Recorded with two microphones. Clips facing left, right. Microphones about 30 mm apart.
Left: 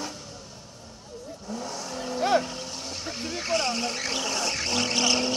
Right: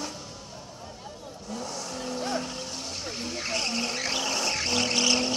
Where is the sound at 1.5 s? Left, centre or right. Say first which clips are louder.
Left 1 dB; centre.